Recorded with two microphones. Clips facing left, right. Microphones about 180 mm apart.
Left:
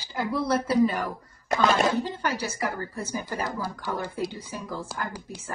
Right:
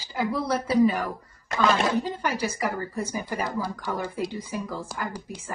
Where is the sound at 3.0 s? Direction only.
15° right (ahead or behind).